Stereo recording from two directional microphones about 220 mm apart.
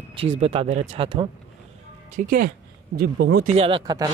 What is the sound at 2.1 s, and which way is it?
Speech, 40° right (ahead or behind).